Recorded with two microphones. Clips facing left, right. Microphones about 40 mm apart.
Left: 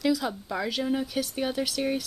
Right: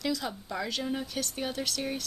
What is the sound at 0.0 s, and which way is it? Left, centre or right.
A woman's voice, centre.